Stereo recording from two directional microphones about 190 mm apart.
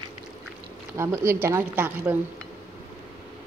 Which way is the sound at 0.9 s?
15° right (ahead or behind).